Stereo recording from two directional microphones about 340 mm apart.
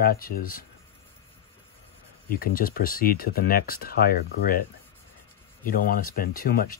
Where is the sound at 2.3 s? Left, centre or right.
Left.